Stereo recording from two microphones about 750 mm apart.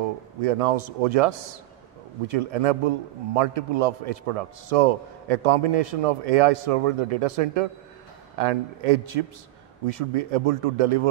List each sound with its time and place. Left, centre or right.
0.4 s a man's voice: right